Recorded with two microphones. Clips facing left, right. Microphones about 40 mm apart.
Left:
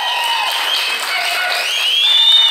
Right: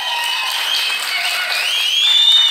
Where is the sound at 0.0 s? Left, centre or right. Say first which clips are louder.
Left 3 dB; centre.